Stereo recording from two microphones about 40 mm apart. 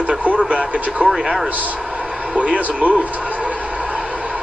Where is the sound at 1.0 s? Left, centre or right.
Centre.